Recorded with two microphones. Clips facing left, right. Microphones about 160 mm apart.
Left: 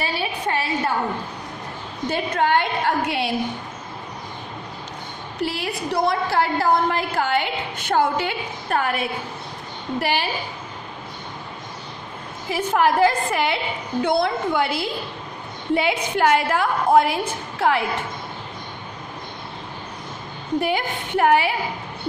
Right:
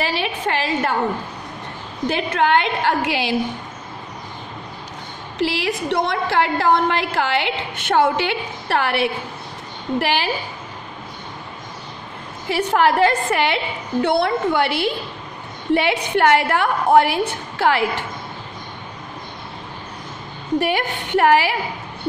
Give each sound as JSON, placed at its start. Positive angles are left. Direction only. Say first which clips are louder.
{"t": 0.0, "sound": "a woman's voice", "louder": "right 3 dB", "side_deg": -85}
{"t": 2.0, "sound": "a woman's voice", "louder": "right 2 dB", "side_deg": -80}
{"t": 5.4, "sound": "a woman's voice", "louder": "right 4 dB", "side_deg": -85}
{"t": 12.4, "sound": "a woman's voice", "louder": "right 2 dB", "side_deg": -70}
{"t": 20.5, "sound": "a woman's voice", "louder": "right 2 dB", "side_deg": -75}